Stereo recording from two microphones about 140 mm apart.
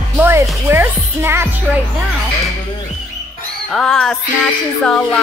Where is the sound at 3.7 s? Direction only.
5° left (ahead or behind).